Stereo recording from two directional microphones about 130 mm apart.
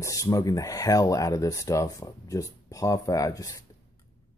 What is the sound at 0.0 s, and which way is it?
Speech, 25° left (ahead or behind).